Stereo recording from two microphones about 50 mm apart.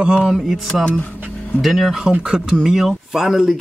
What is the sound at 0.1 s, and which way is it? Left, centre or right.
Speech, centre.